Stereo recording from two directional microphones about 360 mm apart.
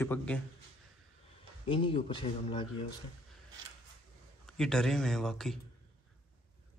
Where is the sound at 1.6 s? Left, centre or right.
Centre.